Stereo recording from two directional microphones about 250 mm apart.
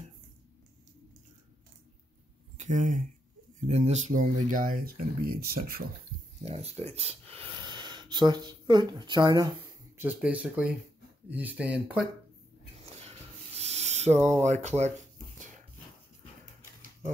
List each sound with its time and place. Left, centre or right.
2.5 s speech: right
6.4 s speech: right; by 12.1 s centre
13.6 s a sound: right
14.4 s speech: right